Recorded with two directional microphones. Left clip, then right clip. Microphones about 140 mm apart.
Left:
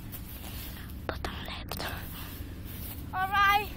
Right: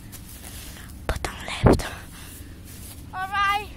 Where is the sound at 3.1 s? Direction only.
10° left (ahead or behind).